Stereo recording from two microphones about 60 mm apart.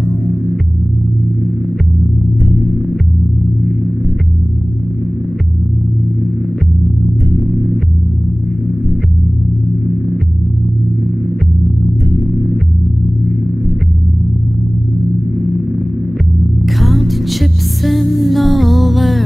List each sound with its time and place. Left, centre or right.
16.6 s music: centre